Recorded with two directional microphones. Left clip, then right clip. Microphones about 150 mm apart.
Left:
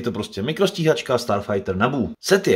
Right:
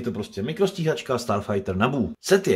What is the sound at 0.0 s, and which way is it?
Speech, 20° left (ahead or behind).